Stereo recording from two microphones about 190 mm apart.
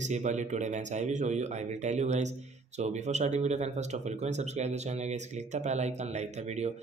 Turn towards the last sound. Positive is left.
turn(degrees=-35)  # may be behind; listen again after turning